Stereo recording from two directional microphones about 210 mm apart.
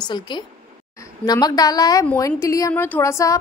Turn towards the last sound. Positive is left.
turn(degrees=15)  # may be behind; listen again after turning